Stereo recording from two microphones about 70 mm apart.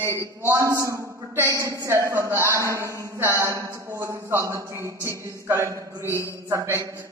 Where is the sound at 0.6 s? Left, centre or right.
Right.